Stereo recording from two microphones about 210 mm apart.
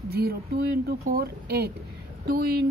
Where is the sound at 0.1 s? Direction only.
50° right (ahead or behind).